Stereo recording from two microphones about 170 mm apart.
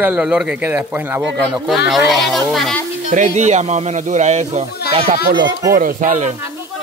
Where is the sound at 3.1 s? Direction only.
45° right (ahead or behind); by 5.7 s 25° right (ahead or behind).